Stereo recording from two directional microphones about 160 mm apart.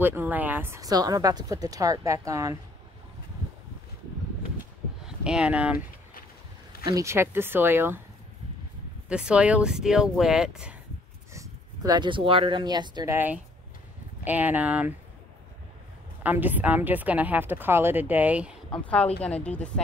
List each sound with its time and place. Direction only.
0.0 s a woman's voice: 15° right (ahead or behind)
5.0 s speech: 5° right (ahead or behind)
6.9 s a woman's voice: 20° right (ahead or behind)
9.1 s speech: 5° right (ahead or behind)
11.3 s speech: 25° right (ahead or behind)
13.1 s a woman's voice: 10° right (ahead or behind)
16.2 s a woman's voice: 10° right (ahead or behind)
19.2 s a woman's voice: 10° left (ahead or behind)